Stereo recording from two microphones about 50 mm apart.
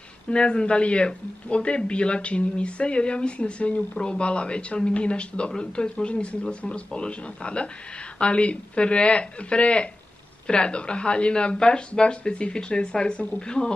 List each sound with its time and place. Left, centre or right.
0.3 s speech: centre